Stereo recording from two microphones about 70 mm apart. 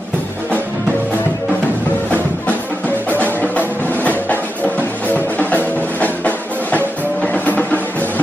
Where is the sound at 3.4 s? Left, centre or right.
Left.